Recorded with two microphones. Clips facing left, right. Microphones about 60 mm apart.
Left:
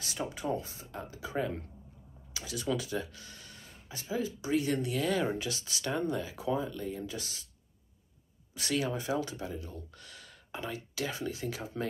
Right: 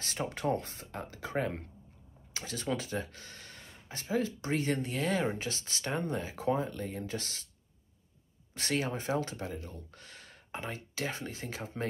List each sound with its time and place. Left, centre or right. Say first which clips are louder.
0.0 s speech: right 2 dB; right
8.5 s speech: left 1 dB; right